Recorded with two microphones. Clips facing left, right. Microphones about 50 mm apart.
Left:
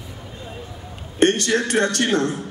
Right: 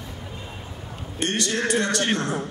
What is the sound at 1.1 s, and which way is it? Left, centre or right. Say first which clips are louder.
Speech: left 8 dB; left.